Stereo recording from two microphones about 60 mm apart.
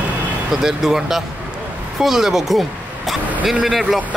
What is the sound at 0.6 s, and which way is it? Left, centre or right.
A man's voice, centre.